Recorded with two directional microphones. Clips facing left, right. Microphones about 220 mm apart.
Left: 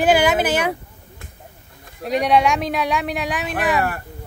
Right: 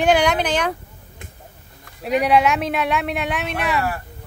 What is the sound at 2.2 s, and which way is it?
Speech, 5° right (ahead or behind).